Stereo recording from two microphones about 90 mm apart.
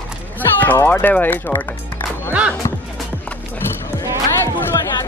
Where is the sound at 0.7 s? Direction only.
25° left (ahead or behind).